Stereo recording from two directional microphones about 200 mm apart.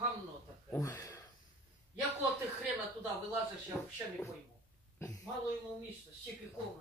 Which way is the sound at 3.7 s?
5° left (ahead or behind).